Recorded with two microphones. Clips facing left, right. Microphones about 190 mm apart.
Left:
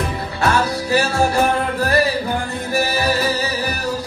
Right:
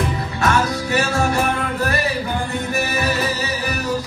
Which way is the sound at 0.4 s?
30° left (ahead or behind).